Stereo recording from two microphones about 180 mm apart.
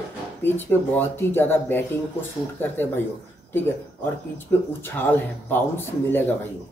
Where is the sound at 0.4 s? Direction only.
10° left (ahead or behind).